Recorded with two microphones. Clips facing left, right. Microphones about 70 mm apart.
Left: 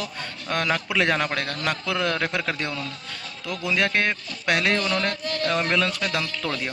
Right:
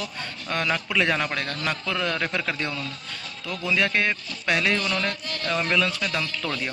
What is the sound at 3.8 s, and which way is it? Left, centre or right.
Speech, left.